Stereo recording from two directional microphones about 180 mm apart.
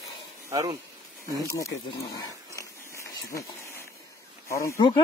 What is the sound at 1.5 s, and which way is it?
Speech, 15° left (ahead or behind).